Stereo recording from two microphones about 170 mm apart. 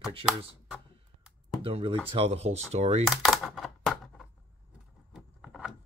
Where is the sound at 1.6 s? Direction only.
30° right (ahead or behind).